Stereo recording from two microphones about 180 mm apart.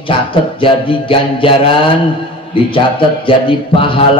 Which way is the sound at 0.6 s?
30° left (ahead or behind).